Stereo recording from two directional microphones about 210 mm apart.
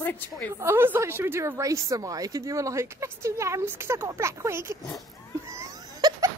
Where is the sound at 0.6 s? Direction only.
10° right (ahead or behind).